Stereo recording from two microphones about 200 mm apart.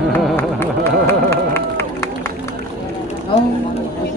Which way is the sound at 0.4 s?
10° left (ahead or behind).